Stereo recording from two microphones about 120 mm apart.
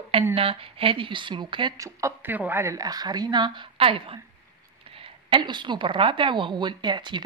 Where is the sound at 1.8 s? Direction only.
25° right (ahead or behind).